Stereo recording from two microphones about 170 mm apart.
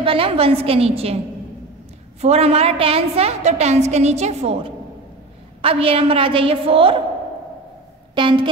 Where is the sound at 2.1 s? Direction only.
40° right (ahead or behind).